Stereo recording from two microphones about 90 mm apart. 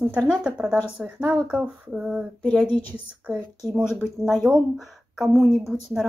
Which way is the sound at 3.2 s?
10° right (ahead or behind).